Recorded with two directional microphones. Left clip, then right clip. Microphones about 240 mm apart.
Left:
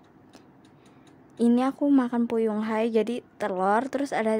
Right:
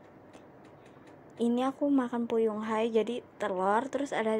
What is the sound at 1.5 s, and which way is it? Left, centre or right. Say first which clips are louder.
A woman's voice: left 6 dB; left.